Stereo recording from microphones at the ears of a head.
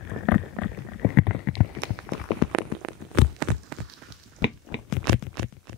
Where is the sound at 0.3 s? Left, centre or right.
Left.